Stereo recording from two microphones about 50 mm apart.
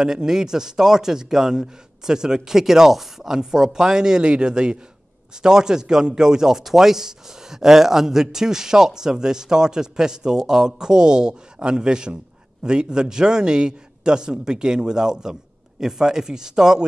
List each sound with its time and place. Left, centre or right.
0.0 s speech: centre